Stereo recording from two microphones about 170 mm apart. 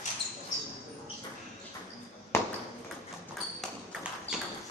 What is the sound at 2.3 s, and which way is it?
Ping, 15° left (ahead or behind).